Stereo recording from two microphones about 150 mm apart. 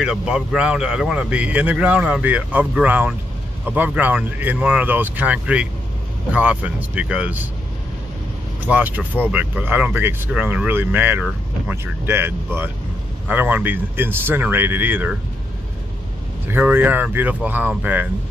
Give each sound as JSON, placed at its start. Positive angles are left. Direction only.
{"t": 0.0, "sound": "speech", "side_deg": -5}
{"t": 8.6, "sound": "speech", "side_deg": -10}
{"t": 16.4, "sound": "speech", "side_deg": -15}